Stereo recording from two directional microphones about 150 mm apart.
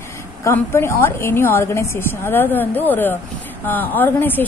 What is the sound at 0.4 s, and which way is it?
A woman's voice, 15° left (ahead or behind).